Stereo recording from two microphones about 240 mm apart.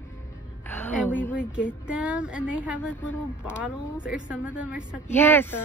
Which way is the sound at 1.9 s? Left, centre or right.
Centre.